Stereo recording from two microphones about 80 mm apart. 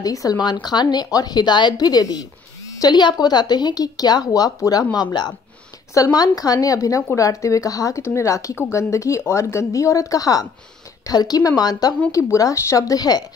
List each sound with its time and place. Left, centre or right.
0.0 s speech: left
0.4 s speech: left
4.9 s speech: left
5.9 s a woman's voice: left
12.1 s speech: left